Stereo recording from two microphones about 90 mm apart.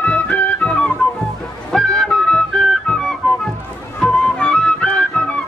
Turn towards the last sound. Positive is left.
turn(degrees=10)  # may be behind; listen again after turning